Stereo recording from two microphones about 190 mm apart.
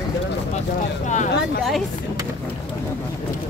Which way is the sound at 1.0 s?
40° left (ahead or behind).